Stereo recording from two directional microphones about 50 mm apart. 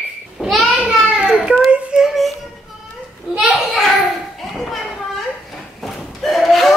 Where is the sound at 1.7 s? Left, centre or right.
Right.